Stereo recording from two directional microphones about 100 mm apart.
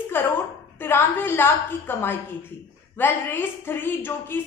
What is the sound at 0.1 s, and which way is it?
A woman's voice, 20° left (ahead or behind).